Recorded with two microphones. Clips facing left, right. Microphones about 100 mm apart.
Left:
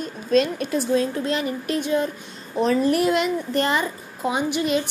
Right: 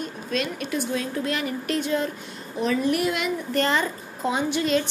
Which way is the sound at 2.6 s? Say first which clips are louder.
Left 4 dB; 40° left (ahead or behind).